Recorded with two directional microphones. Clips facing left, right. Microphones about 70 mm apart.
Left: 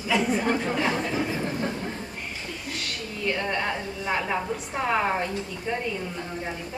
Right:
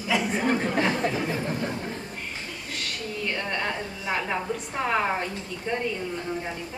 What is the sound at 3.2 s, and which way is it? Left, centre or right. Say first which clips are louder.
A woman's voice: left 3 dB; centre.